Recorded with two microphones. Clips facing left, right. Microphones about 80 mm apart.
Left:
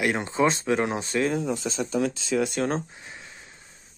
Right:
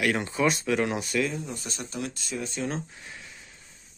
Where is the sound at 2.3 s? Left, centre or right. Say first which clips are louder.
Left 9 dB; left.